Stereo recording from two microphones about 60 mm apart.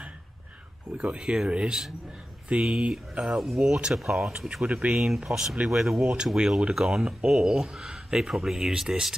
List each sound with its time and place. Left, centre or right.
0.9 s speech: centre
4.3 s speech: centre
4.9 s speech: centre